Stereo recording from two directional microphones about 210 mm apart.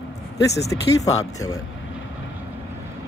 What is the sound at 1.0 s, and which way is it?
Speech, 15° left (ahead or behind).